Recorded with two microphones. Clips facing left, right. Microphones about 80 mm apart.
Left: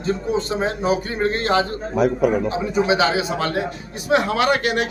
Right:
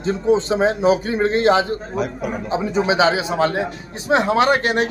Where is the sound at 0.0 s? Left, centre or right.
Right.